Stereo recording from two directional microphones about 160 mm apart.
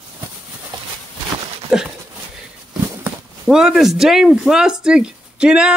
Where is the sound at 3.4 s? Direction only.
Centre (ahead or behind).